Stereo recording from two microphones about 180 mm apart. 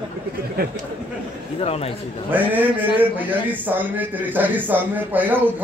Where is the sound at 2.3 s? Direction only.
10° right (ahead or behind).